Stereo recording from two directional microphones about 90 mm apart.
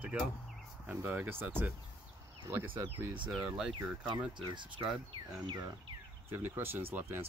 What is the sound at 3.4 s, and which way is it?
Speech, 10° right (ahead or behind).